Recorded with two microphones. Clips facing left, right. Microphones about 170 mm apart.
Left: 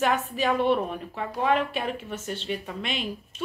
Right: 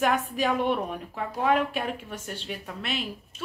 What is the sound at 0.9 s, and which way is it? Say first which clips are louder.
A woman's voice: left 1 dB; 5° right (ahead or behind).